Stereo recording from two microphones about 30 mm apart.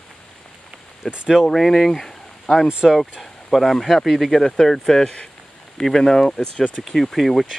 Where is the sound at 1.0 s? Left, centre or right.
Centre.